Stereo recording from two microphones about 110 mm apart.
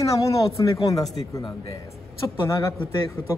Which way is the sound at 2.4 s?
30° left (ahead or behind).